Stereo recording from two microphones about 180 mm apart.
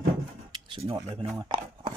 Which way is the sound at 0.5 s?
30° right (ahead or behind).